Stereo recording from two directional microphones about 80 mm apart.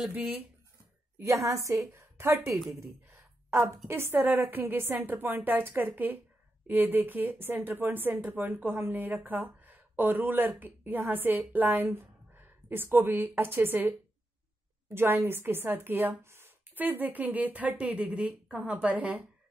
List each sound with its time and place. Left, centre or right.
1.1 s a woman's voice: right
2.8 s a sound: right
3.6 s a woman's voice: right